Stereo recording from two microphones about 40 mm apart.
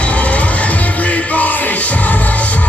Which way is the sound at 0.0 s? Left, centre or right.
Left.